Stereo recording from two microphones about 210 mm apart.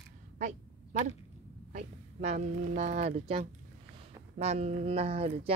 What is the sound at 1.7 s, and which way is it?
Speech, 35° right (ahead or behind).